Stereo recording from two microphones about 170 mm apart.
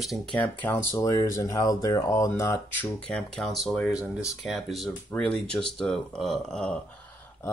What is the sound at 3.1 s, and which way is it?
Speech, centre (ahead or behind).